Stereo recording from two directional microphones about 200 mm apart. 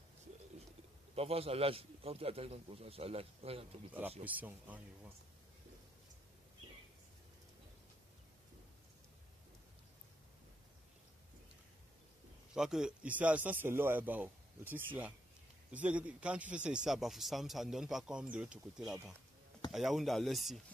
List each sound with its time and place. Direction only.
1.1 s a man's voice: 30° right (ahead or behind)
4.2 s a man's voice: 10° right (ahead or behind)
12.5 s a man's voice: 5° right (ahead or behind)